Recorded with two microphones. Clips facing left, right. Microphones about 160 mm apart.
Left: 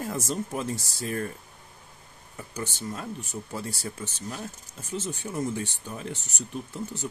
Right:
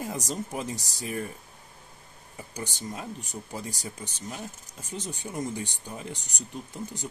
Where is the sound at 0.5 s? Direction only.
15° right (ahead or behind).